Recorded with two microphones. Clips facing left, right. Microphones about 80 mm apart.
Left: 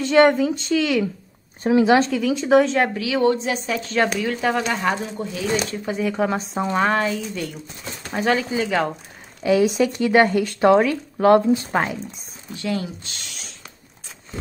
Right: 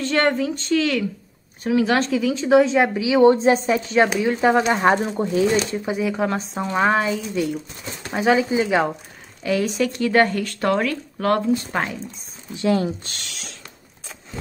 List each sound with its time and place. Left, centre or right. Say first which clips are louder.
0.0 s speech: left 5 dB; centre
1.6 s speech: left 2 dB; left
2.0 s a woman's voice: even; centre; by 3.3 s right
3.3 s a woman's voice: right 7 dB; right
3.9 s a woman's voice: right 2 dB; centre; by 5.5 s right
5.9 s a woman's voice: even; centre
6.8 s speech: right 3 dB; centre
9.4 s speech: left 4 dB; centre
12.5 s speech: right 6 dB; right
13.0 s speech: right 2 dB; right
13.3 s music: right 2 dB; right